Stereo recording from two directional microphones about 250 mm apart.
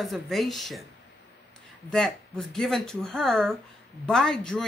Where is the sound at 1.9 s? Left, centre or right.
Centre.